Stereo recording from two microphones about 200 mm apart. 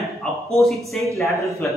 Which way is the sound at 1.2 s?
15° left (ahead or behind).